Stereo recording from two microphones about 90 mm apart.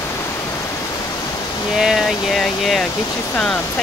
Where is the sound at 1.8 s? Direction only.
Centre (ahead or behind).